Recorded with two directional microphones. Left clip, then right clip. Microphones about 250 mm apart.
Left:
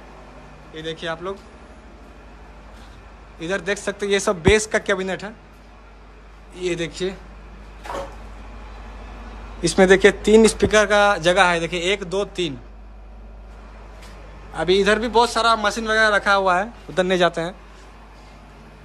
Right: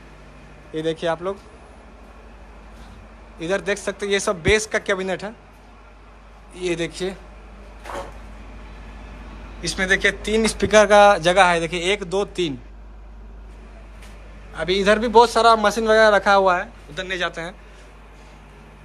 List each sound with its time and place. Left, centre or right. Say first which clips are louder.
0.7 s a man's voice: right 5 dB; centre
3.3 s speech: right 1 dB; centre
6.5 s speech: even; centre
9.6 s speech: left 6 dB; left
14.5 s a man's voice: left 1 dB; centre
16.9 s speech: left 7 dB; centre